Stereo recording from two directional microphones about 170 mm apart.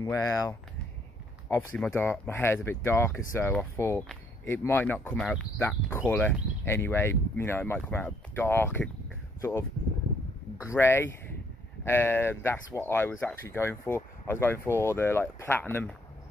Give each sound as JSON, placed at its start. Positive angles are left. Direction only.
{"t": 0.0, "sound": "speech", "side_deg": 20}